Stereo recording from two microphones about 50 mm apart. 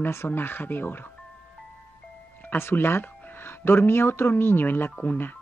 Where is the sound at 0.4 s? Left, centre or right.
Left.